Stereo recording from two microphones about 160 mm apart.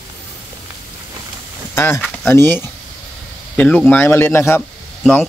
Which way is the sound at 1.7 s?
15° left (ahead or behind).